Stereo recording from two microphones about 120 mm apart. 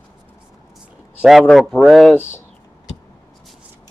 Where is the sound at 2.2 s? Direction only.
20° left (ahead or behind).